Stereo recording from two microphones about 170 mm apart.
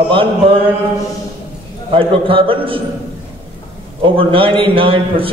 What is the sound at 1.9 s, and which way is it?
Speech, 30° right (ahead or behind).